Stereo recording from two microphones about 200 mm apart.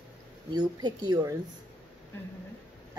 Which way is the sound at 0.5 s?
20° right (ahead or behind).